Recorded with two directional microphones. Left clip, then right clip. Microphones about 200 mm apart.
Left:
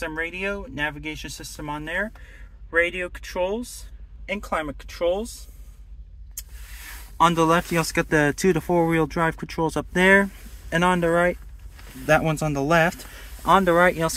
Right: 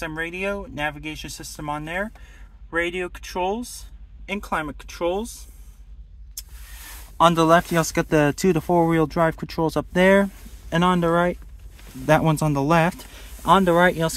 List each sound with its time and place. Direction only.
0.0 s speech: 25° right (ahead or behind)
7.2 s speech: 30° right (ahead or behind)
7.9 s speech: 15° right (ahead or behind)